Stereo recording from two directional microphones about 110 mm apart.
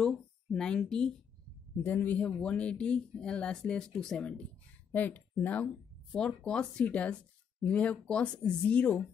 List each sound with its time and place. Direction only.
0.0 s speech: 5° left (ahead or behind)